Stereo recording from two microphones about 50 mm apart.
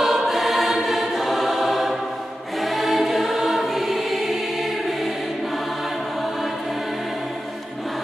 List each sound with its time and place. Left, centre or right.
0.0 s choir: centre